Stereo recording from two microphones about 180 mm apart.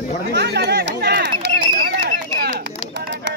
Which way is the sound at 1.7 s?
65° right (ahead or behind).